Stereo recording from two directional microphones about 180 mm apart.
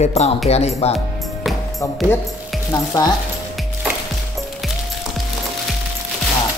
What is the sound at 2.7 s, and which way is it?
Frying, 20° left (ahead or behind).